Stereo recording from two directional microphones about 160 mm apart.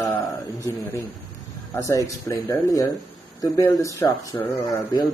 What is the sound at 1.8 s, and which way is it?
Speech, 20° left (ahead or behind).